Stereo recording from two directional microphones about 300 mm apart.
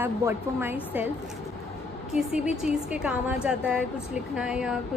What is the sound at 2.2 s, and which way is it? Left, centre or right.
A woman's voice, centre.